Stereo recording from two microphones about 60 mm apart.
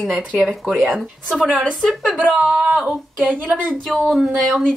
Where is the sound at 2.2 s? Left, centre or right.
Centre.